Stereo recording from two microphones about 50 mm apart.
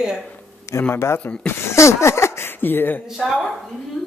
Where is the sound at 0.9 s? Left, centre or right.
Left.